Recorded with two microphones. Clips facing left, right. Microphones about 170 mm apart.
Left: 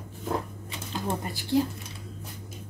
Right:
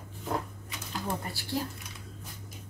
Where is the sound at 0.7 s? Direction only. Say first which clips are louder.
Left 4 dB; 25° left (ahead or behind).